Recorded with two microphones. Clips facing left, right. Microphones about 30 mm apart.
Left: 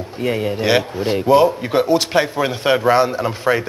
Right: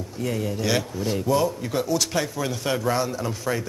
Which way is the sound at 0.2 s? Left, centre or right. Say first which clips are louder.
Left 7 dB; left.